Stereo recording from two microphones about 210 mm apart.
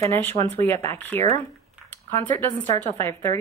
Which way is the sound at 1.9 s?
10° left (ahead or behind).